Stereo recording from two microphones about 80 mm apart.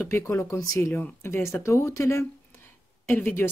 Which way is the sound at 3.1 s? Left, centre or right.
Left.